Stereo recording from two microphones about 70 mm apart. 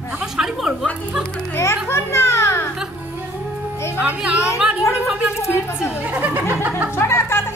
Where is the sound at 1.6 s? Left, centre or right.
Left.